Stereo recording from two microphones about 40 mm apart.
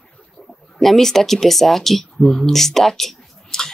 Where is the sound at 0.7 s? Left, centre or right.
Centre.